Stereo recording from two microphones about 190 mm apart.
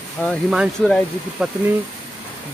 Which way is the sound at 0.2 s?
Centre (ahead or behind).